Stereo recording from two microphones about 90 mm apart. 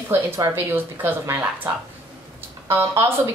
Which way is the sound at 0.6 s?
25° right (ahead or behind).